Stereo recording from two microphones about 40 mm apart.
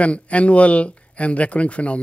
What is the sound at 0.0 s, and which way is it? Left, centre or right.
Speech, left.